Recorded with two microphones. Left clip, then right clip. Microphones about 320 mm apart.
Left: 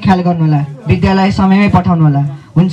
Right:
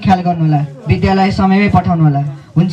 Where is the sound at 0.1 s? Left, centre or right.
Centre.